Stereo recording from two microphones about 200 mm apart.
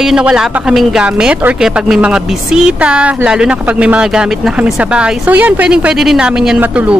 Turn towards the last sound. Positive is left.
turn(degrees=-5)  # may be behind; listen again after turning